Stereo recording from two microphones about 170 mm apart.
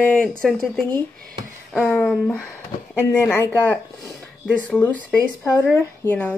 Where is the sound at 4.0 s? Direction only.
10° right (ahead or behind).